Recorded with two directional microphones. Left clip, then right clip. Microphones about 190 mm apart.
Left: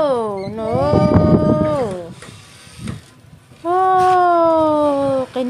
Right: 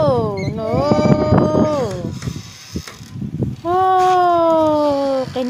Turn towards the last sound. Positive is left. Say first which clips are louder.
# even
turn(degrees=0)  # may be behind; listen again after turning